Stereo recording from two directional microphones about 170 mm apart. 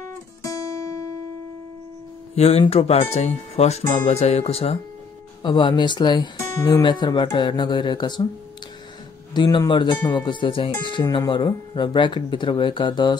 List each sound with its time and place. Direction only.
0.0 s guitar: 20° left (ahead or behind)
2.3 s speech: 40° left (ahead or behind)
9.3 s speech: 25° left (ahead or behind)